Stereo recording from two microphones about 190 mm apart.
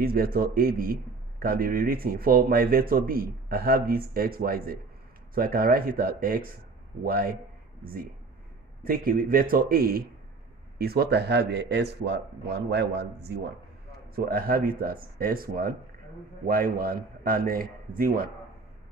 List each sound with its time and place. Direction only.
0.0 s speech: 50° right (ahead or behind)
8.8 s a man's voice: 50° right (ahead or behind)